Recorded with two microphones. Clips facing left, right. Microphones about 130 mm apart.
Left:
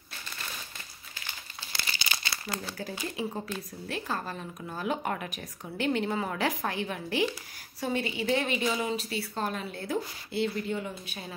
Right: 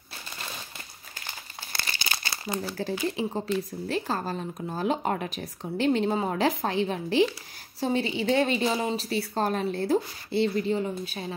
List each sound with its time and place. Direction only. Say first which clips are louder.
1.7 s crumpling: right 2 dB; 50° right (ahead or behind)
2.8 s a woman's voice: right 7 dB; 30° right (ahead or behind)